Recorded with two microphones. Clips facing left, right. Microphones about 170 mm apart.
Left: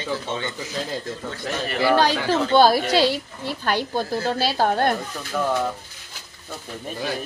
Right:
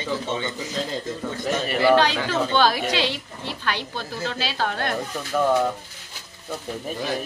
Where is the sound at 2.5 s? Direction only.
40° left (ahead or behind).